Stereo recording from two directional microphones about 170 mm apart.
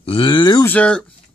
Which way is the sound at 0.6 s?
5° left (ahead or behind).